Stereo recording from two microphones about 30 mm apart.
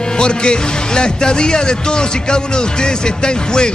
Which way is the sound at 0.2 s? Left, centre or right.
Left.